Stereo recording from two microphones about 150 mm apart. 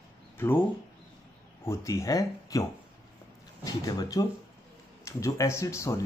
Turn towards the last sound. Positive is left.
turn(degrees=20)  # may be behind; listen again after turning